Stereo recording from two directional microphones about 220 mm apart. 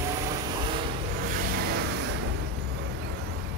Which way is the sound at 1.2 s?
40° right (ahead or behind).